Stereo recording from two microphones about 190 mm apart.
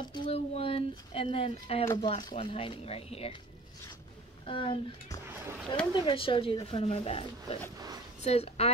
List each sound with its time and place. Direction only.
0.0 s speech: 25° left (ahead or behind)
4.5 s a woman's voice: 25° left (ahead or behind)